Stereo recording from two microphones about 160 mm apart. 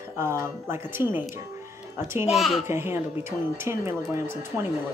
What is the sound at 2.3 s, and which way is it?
Speech, centre (ahead or behind).